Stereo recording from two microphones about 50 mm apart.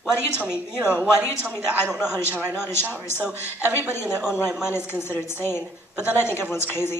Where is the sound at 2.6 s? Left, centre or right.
Left.